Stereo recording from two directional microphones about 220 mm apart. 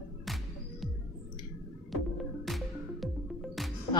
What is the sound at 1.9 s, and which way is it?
Music, centre (ahead or behind).